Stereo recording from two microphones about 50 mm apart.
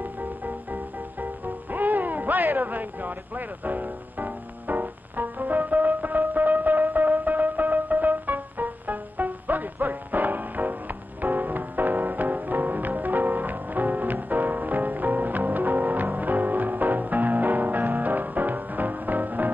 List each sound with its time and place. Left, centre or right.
0.0 s music: right